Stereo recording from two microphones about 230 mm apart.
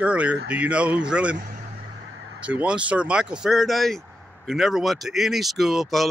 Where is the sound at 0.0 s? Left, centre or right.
Centre.